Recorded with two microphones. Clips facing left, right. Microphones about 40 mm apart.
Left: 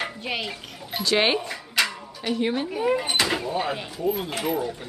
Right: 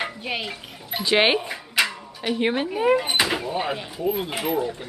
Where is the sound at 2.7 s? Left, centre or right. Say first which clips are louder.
Right 4 dB; centre.